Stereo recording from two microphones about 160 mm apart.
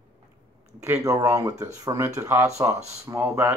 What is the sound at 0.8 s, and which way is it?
Speech, 20° right (ahead or behind).